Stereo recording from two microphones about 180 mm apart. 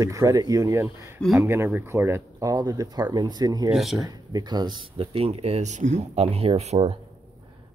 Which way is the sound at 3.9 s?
20° right (ahead or behind).